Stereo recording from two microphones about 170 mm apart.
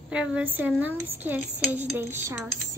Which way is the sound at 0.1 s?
5° right (ahead or behind).